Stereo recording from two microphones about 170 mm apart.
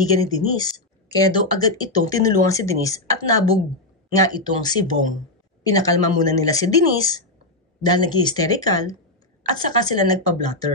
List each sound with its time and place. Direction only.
0.0 s speech: 20° left (ahead or behind)